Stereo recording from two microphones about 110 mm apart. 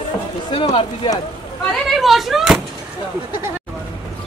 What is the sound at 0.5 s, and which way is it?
Speech, 50° left (ahead or behind).